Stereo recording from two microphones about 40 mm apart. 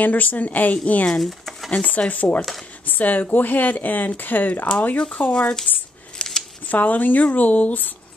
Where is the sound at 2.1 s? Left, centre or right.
Left.